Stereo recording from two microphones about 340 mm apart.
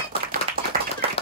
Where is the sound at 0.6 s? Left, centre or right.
Right.